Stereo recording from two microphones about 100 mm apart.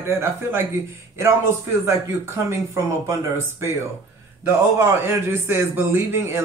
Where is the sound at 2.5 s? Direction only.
30° right (ahead or behind).